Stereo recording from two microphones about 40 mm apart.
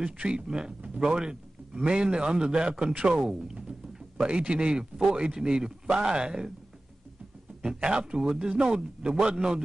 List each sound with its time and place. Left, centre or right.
0.2 s a man's voice: right
7.6 s a man's voice: right